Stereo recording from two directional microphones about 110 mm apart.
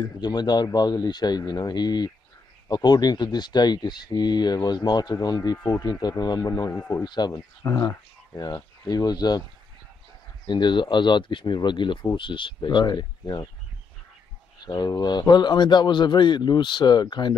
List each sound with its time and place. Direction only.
0.0 s speech: 40° left (ahead or behind)
6.7 s speech: 25° left (ahead or behind)
7.2 s speech: 40° left (ahead or behind)
7.6 s speech: 30° left (ahead or behind)
10.4 s speech: 45° left (ahead or behind)
14.6 s speech: 35° left (ahead or behind)